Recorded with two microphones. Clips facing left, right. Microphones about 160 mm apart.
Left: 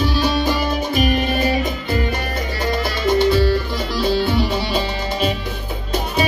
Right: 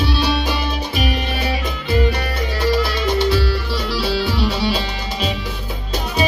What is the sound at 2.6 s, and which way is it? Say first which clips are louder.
Music: right 2 dB; 50° left (ahead or behind).